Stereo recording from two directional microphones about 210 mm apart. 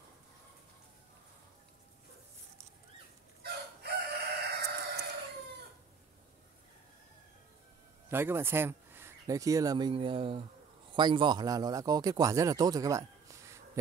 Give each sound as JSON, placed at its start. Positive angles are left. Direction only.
{"t": 3.4, "sound": "chicken", "side_deg": -50}
{"t": 8.1, "sound": "a man's voice", "side_deg": -10}